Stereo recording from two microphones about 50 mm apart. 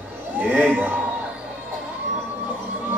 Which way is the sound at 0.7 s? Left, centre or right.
Right.